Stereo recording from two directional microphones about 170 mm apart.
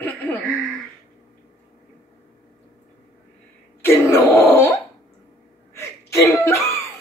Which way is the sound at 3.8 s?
15° left (ahead or behind).